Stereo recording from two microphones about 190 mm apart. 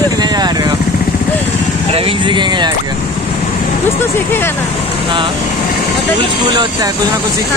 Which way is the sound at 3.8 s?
10° left (ahead or behind).